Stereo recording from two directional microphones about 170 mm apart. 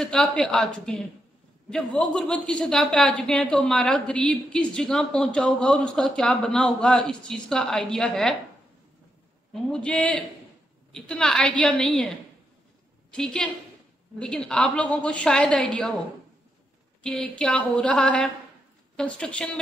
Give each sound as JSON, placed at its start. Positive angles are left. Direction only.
{"t": 0.0, "sound": "a woman's voice", "side_deg": 5}
{"t": 9.5, "sound": "a woman's voice", "side_deg": 5}
{"t": 13.1, "sound": "a woman's voice", "side_deg": 5}
{"t": 17.0, "sound": "a woman's voice", "side_deg": 5}